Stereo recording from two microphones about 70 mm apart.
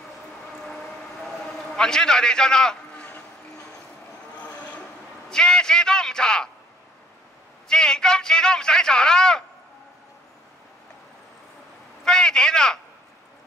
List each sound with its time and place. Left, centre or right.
1.8 s a man's voice: centre
4.4 s vehicle: left
5.3 s a man's voice: centre
7.6 s a man's voice: centre
12.0 s a sound: centre